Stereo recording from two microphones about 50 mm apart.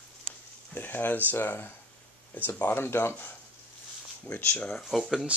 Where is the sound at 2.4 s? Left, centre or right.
Left.